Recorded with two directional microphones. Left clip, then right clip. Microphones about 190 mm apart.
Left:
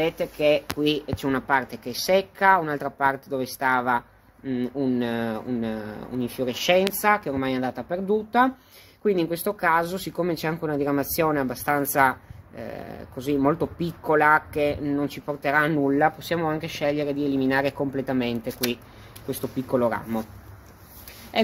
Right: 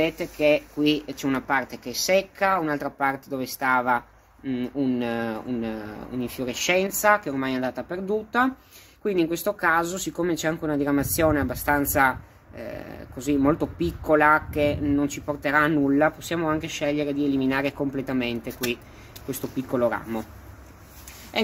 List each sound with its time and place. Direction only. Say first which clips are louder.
0.0 s speech: even; 25° left (ahead or behind)